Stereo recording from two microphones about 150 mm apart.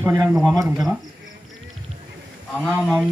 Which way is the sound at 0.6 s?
25° right (ahead or behind).